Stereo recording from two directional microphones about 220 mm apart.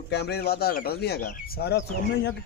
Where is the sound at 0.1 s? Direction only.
50° left (ahead or behind).